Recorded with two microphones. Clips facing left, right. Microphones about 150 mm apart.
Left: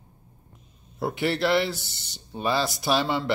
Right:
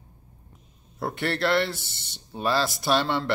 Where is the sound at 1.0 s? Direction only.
Centre (ahead or behind).